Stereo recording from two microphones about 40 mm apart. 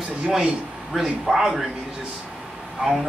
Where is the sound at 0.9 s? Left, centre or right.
Centre.